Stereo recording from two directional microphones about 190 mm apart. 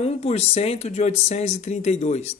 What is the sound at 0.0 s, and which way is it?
Speech, 35° left (ahead or behind).